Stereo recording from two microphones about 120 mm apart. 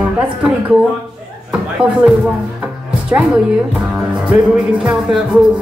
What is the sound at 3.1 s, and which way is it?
Speech, 15° right (ahead or behind).